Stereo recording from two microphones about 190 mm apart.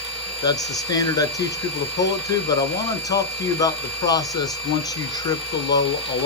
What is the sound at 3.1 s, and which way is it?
Speech, 20° left (ahead or behind).